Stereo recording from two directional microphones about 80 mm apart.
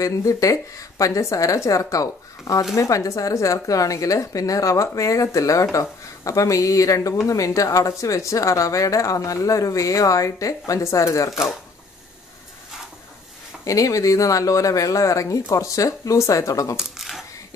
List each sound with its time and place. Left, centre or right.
0.0 s a woman's voice: left
13.7 s a woman's voice: left
16.7 s a sound: centre